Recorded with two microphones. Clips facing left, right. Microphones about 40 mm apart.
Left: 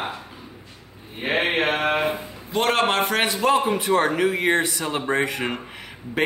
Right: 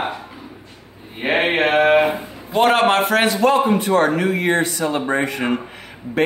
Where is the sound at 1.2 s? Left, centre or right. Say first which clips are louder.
Right 4 dB; centre.